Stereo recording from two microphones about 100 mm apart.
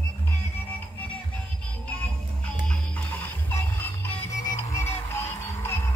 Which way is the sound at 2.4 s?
10° left (ahead or behind).